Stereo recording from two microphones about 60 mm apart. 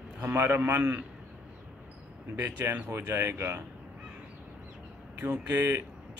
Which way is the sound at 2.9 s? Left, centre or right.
Right.